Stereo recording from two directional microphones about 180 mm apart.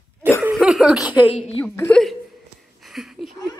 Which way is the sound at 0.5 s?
5° right (ahead or behind).